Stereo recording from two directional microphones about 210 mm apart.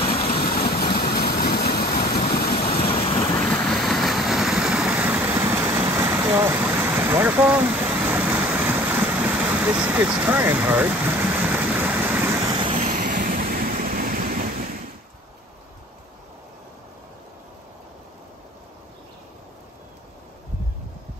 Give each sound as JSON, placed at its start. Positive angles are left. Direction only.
{"t": 0.0, "sound": "vehicle", "side_deg": 30}
{"t": 0.6, "sound": "vehicle", "side_deg": 45}
{"t": 3.7, "sound": "vehicle", "side_deg": 0}
{"t": 12.7, "sound": "vehicle", "side_deg": -35}